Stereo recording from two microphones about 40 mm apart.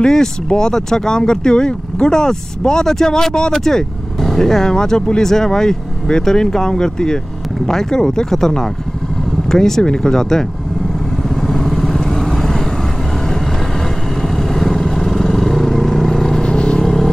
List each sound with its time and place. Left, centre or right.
0.0 s speech: centre
9.5 s speech: centre
11.2 s vehicle: centre
14.2 s vehicle: centre
16.4 s vehicle: left
16.8 s vehicle: centre